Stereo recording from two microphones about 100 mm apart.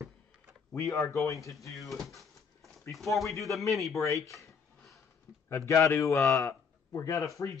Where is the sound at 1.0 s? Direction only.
30° left (ahead or behind).